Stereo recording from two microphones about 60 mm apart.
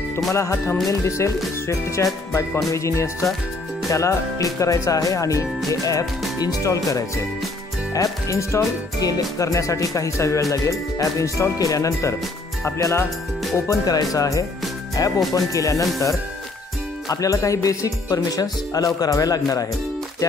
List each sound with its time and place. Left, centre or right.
0.3 s music: left
0.8 s speech: left
2.3 s music: left
3.9 s speech: left
5.7 s speech: left
7.9 s speech: left
13.7 s speech: left
17.1 s speech: left